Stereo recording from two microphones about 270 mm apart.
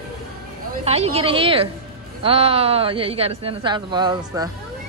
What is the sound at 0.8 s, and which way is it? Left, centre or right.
Speech, right.